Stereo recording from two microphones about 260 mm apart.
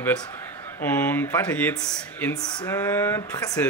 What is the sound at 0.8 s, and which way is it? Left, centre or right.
Speech, centre.